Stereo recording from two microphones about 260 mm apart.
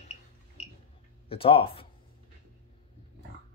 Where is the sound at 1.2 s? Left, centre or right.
Left.